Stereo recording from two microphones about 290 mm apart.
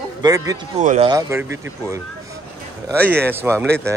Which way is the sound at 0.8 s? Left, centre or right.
Right.